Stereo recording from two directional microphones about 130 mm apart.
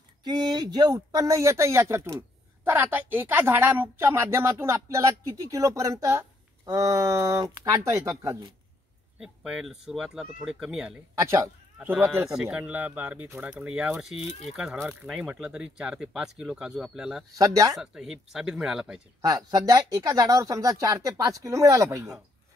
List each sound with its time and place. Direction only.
0.2 s speech: 35° right (ahead or behind)
9.2 s speech: 5° right (ahead or behind)
11.1 s speech: 25° right (ahead or behind); by 17.2 s 5° right (ahead or behind)
17.4 s speech: 25° right (ahead or behind)
17.7 s speech: 5° right (ahead or behind)
19.2 s speech: 30° right (ahead or behind)